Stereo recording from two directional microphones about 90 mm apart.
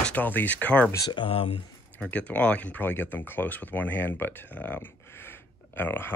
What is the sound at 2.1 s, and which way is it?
Speech, 15° left (ahead or behind).